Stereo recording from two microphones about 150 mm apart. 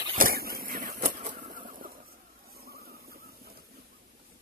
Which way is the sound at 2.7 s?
90° right.